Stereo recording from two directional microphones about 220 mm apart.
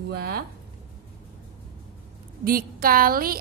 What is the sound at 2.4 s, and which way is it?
Speech, 40° right (ahead or behind).